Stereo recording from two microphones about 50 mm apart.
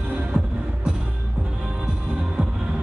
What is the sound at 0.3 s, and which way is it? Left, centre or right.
Music, right.